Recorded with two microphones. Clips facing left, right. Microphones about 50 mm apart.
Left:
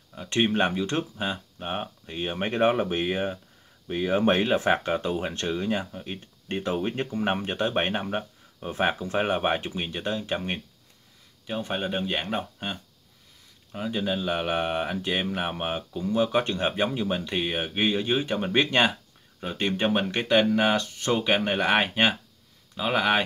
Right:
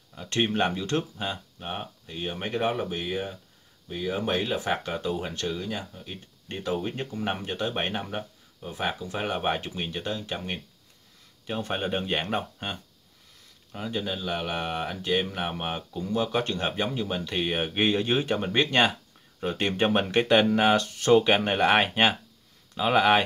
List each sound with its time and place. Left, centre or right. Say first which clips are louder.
0.1 s speech: left 2 dB; centre
8.5 s speech: left 5 dB; left
9.3 s speech: left 3 dB; centre
11.4 s speech: even; centre